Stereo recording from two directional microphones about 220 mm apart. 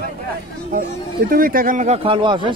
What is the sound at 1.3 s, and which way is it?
Speech, 40° right (ahead or behind).